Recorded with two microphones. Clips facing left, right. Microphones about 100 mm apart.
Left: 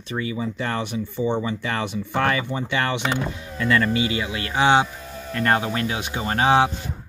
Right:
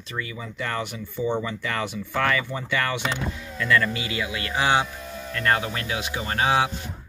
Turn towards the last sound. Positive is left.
turn(degrees=25)  # may be behind; listen again after turning